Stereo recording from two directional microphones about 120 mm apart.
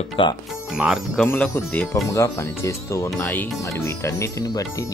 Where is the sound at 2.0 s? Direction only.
25° left (ahead or behind).